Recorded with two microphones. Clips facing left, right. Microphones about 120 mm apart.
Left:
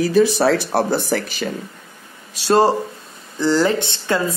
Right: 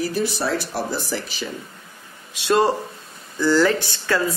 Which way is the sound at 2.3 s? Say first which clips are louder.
Left 3 dB; 35° left (ahead or behind).